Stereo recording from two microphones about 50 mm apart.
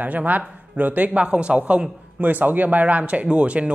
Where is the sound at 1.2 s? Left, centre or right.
Right.